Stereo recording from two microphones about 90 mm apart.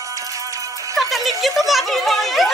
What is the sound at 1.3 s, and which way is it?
Speech, centre (ahead or behind).